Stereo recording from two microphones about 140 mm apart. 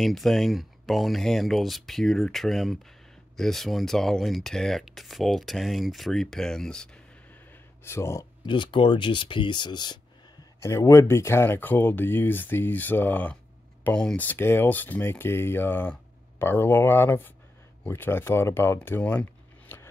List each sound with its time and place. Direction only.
0.0 s speech: centre (ahead or behind)
7.8 s speech: 20° left (ahead or behind)
8.5 s speech: 35° left (ahead or behind)
10.6 s speech: 20° left (ahead or behind)
19.7 s a sound: 20° left (ahead or behind)